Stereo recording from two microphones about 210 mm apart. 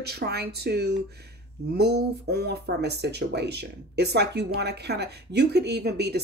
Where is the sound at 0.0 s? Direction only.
50° right (ahead or behind).